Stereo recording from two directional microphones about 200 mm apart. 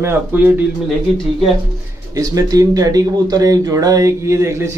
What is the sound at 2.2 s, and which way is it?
Speech, 15° right (ahead or behind).